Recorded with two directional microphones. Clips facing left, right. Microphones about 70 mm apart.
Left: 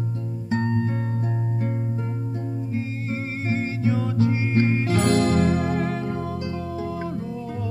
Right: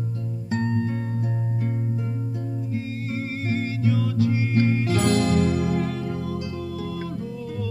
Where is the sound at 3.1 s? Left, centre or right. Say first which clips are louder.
Even; left.